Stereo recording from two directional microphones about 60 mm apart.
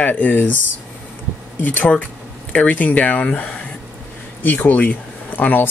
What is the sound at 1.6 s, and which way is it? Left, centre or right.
Speech, left.